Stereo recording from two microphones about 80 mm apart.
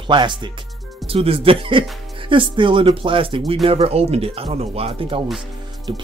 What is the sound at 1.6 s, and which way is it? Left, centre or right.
Speech, right.